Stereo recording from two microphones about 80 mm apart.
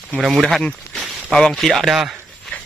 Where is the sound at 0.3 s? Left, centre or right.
Centre.